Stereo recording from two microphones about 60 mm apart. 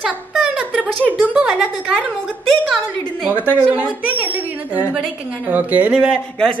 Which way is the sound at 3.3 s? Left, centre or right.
Right.